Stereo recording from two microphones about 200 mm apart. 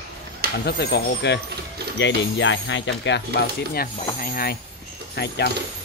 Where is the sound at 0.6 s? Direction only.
55° left (ahead or behind).